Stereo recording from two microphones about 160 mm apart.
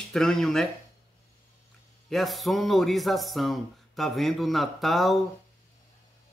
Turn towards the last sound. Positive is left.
turn(degrees=0)  # may be behind; listen again after turning